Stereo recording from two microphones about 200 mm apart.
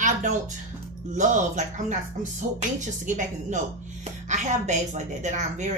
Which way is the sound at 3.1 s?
40° right (ahead or behind).